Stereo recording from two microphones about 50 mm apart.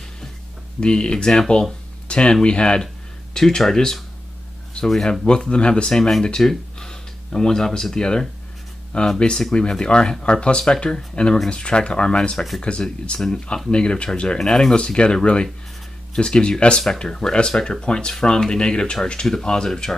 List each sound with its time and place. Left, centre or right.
0.7 s speech: centre
1.5 s a sound: centre
2.4 s speech: centre
5.2 s speech: centre
14.5 s speech: centre